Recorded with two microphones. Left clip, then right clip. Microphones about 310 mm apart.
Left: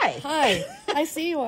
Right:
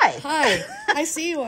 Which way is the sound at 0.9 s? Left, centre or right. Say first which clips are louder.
Even; left.